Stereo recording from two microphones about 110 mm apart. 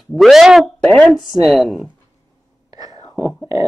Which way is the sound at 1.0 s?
5° right (ahead or behind).